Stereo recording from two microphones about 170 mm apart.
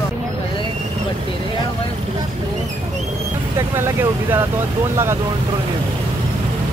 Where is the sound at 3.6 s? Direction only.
15° right (ahead or behind).